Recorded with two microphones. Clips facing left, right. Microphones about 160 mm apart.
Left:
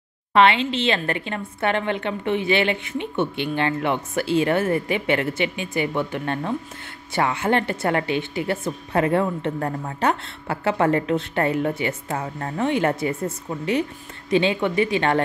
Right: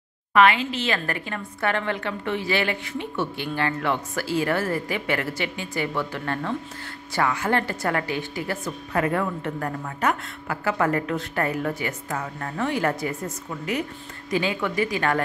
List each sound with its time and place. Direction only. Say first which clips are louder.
0.3 s a woman's voice: left 2 dB; 25° left (ahead or behind)